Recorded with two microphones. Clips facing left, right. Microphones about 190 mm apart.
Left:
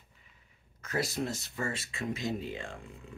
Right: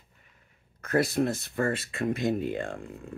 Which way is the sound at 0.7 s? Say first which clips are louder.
Right 8 dB; 55° right (ahead or behind).